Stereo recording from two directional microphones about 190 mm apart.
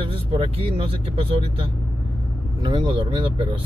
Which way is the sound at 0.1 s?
30° right (ahead or behind).